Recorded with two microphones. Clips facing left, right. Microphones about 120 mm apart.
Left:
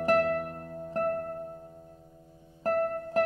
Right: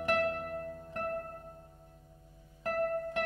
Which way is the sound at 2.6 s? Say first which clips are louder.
Left 4 dB; 35° left (ahead or behind).